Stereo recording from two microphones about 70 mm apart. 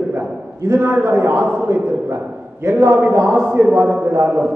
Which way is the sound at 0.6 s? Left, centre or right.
Right.